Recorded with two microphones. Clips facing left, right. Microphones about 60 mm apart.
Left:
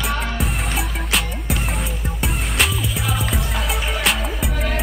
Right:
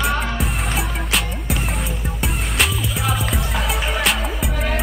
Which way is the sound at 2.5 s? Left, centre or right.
Centre.